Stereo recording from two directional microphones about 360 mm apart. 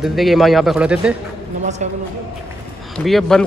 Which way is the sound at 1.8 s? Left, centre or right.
Centre.